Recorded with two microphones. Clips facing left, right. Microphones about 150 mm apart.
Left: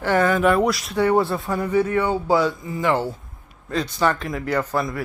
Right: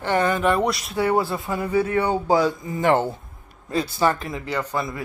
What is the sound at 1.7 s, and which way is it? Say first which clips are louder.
Speech: left 1 dB; 30° right (ahead or behind).